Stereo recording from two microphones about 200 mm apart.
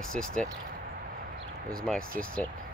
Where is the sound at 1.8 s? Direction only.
5° left (ahead or behind).